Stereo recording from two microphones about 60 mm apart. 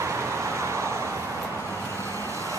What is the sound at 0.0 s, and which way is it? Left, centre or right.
Vehicle, right.